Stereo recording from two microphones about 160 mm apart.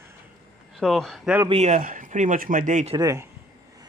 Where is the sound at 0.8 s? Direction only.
Centre (ahead or behind).